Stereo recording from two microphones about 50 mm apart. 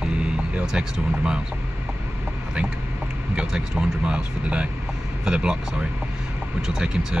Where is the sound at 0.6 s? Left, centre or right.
Centre.